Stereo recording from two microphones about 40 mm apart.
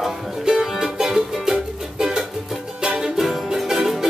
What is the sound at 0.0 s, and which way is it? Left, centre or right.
Music, centre.